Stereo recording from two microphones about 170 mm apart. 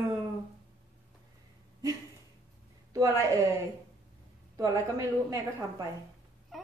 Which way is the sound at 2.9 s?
15° right (ahead or behind).